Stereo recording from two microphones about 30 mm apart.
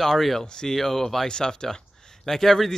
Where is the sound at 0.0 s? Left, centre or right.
Centre.